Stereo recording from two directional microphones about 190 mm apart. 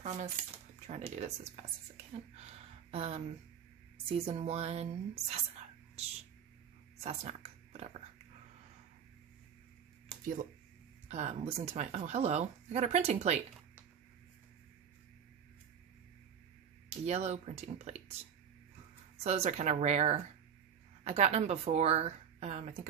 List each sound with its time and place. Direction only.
0.0 s cutlery: 40° right (ahead or behind)
0.8 s speech: 35° right (ahead or behind)
2.3 s a sound: 30° right (ahead or behind)
4.1 s speech: 30° right (ahead or behind)
7.0 s speech: 35° right (ahead or behind)
10.2 s speech: 45° right (ahead or behind)
11.1 s speech: 35° right (ahead or behind)
17.0 s speech: 35° right (ahead or behind)
19.2 s speech: 35° right (ahead or behind)